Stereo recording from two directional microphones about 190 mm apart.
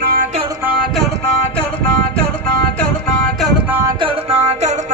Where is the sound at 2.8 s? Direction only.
5° left (ahead or behind).